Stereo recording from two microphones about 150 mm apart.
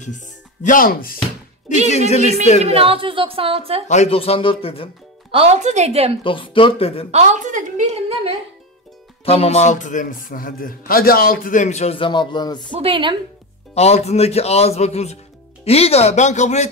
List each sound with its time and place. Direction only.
0.0 s speech: 55° left (ahead or behind); by 1.2 s 75° left (ahead or behind)
2.0 s speech: 45° left (ahead or behind)
2.6 s speech: 40° right (ahead or behind)
3.8 s speech: 50° left (ahead or behind)
5.3 s a woman's voice: 45° right (ahead or behind)
6.2 s speech: 35° left (ahead or behind)
7.1 s a woman's voice: 50° right (ahead or behind)
9.2 s a man's voice: 40° left (ahead or behind)
12.0 s speech: 30° left (ahead or behind)
12.8 s speech: 35° right (ahead or behind)
13.7 s speech: 45° left (ahead or behind)